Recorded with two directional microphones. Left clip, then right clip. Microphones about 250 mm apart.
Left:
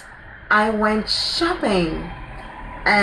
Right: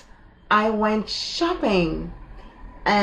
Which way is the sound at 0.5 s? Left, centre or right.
Centre.